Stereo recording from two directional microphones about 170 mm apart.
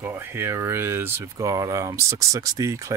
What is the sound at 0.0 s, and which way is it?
Speech, 15° right (ahead or behind).